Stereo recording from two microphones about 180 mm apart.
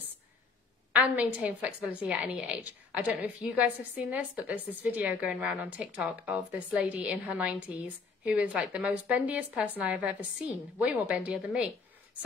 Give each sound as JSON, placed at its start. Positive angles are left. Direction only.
{"t": 0.9, "sound": "a woman's voice", "side_deg": -10}